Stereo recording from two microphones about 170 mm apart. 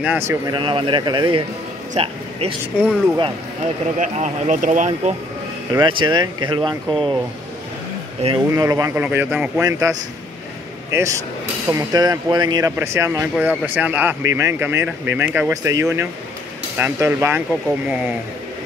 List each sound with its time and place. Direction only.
0.0 s speech: 10° right (ahead or behind)
0.5 s speech: 30° right (ahead or behind)
2.7 s speech: 5° right (ahead or behind)
4.0 s speech: 50° right (ahead or behind)
5.7 s speech: 25° right (ahead or behind)
8.2 s speech: 40° right (ahead or behind)
8.5 s speech: 20° right (ahead or behind)